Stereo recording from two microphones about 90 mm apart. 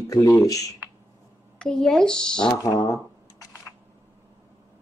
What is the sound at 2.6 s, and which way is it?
Speech, 40° left (ahead or behind).